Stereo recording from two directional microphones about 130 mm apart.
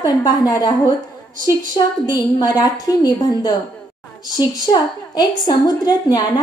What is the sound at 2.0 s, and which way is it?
A woman's voice, 30° left (ahead or behind).